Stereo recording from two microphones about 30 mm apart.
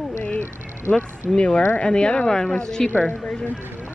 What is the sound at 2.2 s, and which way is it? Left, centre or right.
Speech, left.